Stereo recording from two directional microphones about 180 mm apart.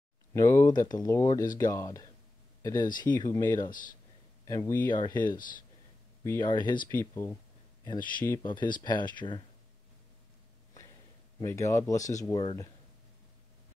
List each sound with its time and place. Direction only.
0.3 s speech: 15° left (ahead or behind)
3.7 s speech: 50° left (ahead or behind)
4.5 s speech: 20° left (ahead or behind)
6.9 s speech: 10° left (ahead or behind)
7.8 s speech: 25° left (ahead or behind)
11.4 s speech: 15° left (ahead or behind)